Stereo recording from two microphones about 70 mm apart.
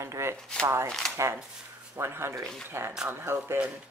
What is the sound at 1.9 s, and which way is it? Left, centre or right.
Speech, right.